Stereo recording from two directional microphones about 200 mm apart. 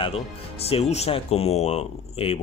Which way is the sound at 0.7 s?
30° left (ahead or behind).